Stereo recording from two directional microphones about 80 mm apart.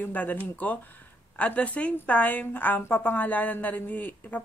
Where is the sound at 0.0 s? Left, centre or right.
Left.